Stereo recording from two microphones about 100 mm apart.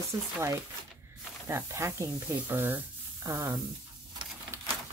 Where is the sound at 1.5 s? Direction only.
25° right (ahead or behind).